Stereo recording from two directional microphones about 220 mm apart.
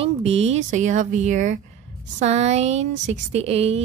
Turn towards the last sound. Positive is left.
turn(degrees=-30)  # may be behind; listen again after turning